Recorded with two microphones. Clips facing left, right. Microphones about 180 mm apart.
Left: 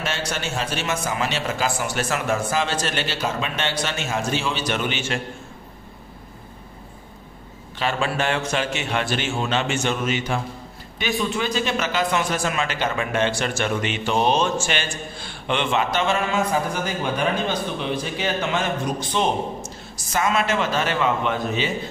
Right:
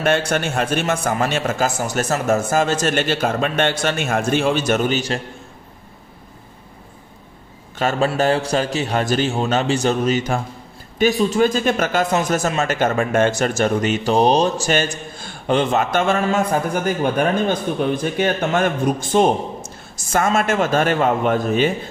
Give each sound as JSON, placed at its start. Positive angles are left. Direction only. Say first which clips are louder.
{"t": 0.0, "sound": "a man's voice", "louder": "right 9 dB", "side_deg": -55}
{"t": 7.8, "sound": "a man's voice", "louder": "right 6 dB", "side_deg": -40}